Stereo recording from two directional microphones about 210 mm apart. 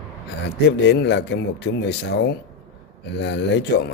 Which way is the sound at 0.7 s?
55° left (ahead or behind).